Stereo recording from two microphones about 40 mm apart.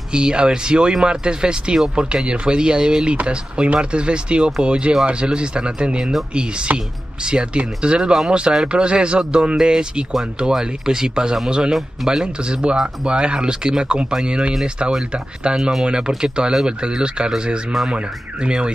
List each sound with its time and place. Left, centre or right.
0.1 s speech: right
11.7 s speech: centre
12.2 s speech: right